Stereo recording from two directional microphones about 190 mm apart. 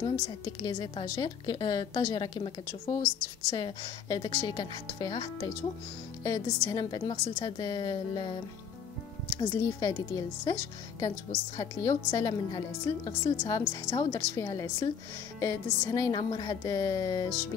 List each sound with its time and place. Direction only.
0.0 s speech: 20° left (ahead or behind)
9.4 s speech: 20° left (ahead or behind)